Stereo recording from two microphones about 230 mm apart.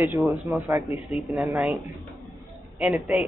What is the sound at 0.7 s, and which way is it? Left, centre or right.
Speech, centre.